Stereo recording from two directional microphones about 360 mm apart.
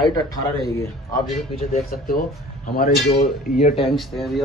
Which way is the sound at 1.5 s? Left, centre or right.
Left.